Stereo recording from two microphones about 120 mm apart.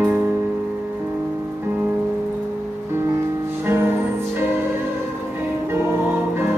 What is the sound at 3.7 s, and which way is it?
Music, 20° right (ahead or behind).